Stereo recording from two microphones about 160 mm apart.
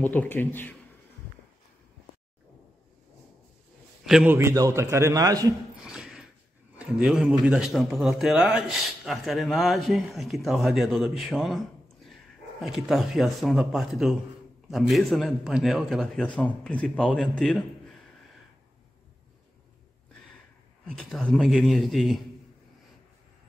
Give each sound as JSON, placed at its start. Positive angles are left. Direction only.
{"t": 0.0, "sound": "speech", "side_deg": 10}
{"t": 4.0, "sound": "a man's voice", "side_deg": -5}
{"t": 5.8, "sound": "a sound", "side_deg": -5}
{"t": 6.8, "sound": "a man's voice", "side_deg": -5}
{"t": 20.8, "sound": "a man's voice", "side_deg": 5}